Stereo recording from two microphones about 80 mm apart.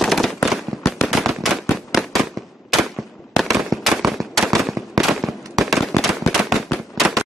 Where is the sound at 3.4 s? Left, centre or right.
Centre.